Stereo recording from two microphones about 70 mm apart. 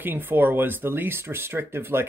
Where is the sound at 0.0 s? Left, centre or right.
Right.